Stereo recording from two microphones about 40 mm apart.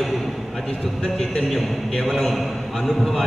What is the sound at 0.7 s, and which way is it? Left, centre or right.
Speech, centre.